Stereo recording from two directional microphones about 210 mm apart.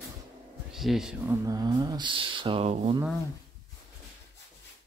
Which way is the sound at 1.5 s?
20° right (ahead or behind).